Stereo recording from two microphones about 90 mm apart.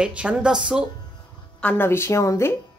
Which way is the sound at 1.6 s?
20° left (ahead or behind).